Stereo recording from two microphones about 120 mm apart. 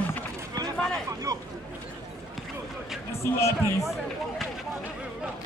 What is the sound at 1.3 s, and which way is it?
Chatter, 30° right (ahead or behind).